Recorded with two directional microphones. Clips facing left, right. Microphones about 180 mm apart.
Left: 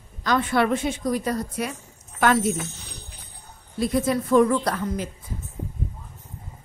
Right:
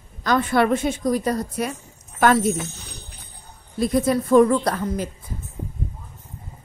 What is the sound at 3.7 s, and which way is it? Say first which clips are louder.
A woman's voice: right 3 dB; 40° right (ahead or behind).